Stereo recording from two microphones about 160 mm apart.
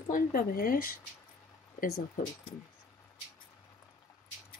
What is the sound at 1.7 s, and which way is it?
Speech, 80° left.